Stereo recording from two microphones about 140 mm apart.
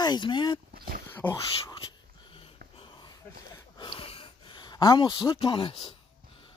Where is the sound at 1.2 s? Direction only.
10° left (ahead or behind).